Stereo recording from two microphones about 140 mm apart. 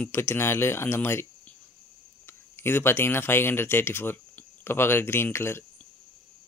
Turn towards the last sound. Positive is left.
turn(degrees=20)  # may be behind; listen again after turning